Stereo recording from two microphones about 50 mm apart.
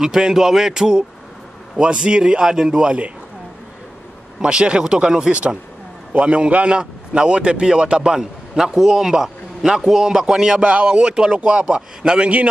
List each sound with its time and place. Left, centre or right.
0.0 s a man's voice: centre
4.4 s a man's voice: centre
8.2 s a man's voice: centre; by 12.4 s right